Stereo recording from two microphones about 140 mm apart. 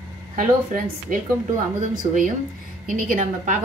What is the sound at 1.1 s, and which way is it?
Speech, 80° right.